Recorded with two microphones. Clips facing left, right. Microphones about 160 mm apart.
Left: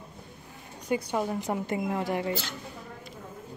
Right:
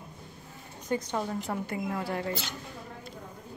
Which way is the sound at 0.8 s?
10° left (ahead or behind).